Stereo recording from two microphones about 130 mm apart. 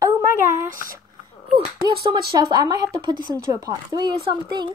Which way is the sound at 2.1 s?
30° right (ahead or behind).